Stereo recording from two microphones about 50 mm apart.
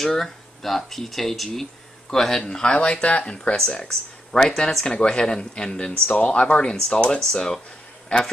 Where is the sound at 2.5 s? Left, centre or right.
Centre.